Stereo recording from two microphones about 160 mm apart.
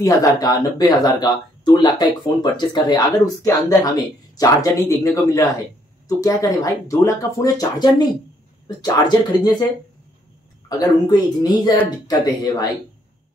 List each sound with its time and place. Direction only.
0.0 s speech: 20° left (ahead or behind)
10.7 s speech: 25° left (ahead or behind)